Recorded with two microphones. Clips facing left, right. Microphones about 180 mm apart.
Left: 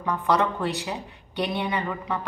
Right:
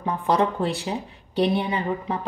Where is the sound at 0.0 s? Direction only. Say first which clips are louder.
Right 2 dB; 30° right (ahead or behind).